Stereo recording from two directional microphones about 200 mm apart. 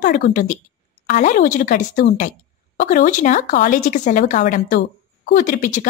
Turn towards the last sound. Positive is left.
turn(degrees=40)  # may be behind; listen again after turning